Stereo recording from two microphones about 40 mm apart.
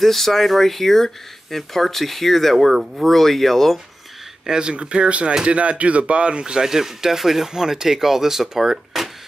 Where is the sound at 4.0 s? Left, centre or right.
Centre.